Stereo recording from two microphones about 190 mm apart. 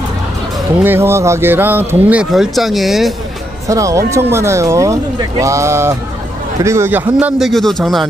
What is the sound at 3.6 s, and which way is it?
A man's voice, 15° right (ahead or behind).